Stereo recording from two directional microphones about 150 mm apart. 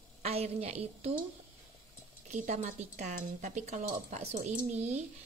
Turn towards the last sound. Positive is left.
turn(degrees=-50)  # may be behind; listen again after turning